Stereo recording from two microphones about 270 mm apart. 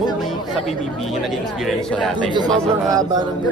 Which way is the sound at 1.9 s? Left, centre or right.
Centre.